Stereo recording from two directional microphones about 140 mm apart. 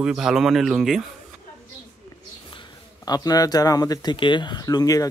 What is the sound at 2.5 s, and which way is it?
Speech, 30° left (ahead or behind).